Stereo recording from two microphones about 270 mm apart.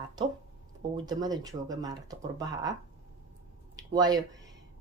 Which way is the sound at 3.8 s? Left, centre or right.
Centre.